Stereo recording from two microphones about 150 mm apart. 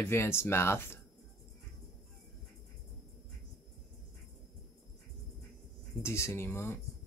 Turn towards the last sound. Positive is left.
turn(degrees=15)  # may be behind; listen again after turning